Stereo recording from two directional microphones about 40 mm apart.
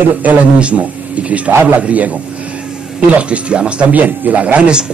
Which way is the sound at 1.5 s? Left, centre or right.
Right.